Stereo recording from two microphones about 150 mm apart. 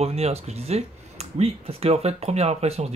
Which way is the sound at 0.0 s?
45° right (ahead or behind).